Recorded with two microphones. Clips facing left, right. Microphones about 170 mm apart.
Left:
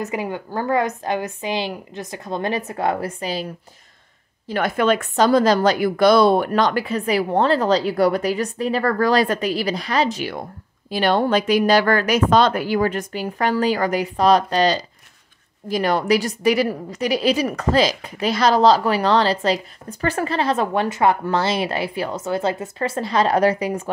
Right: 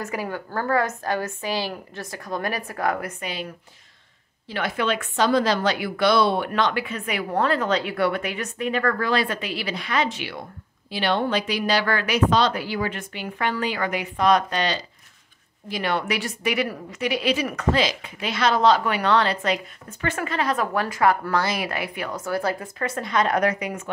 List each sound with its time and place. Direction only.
0.0 s a woman's voice: 20° left (ahead or behind)
4.5 s a woman's voice: 45° left (ahead or behind)